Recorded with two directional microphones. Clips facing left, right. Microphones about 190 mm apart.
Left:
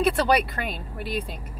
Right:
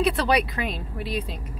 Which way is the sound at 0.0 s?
Centre (ahead or behind).